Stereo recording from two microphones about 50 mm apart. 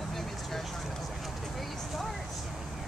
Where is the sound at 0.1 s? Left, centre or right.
Centre.